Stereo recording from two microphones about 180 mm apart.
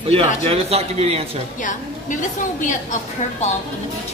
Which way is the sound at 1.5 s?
45° left (ahead or behind).